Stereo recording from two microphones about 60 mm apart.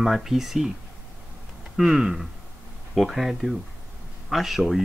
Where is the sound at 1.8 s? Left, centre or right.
Centre.